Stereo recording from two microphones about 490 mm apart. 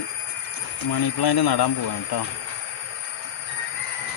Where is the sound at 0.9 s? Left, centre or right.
Left.